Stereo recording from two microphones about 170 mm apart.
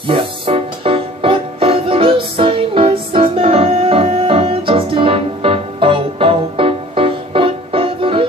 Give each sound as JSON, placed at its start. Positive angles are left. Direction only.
{"t": 0.0, "sound": "music", "side_deg": -35}